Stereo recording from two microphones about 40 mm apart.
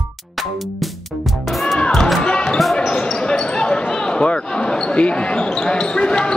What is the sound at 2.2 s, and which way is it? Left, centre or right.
Basketball bounce, left.